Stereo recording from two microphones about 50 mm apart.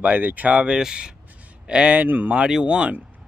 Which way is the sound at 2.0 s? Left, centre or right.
Right.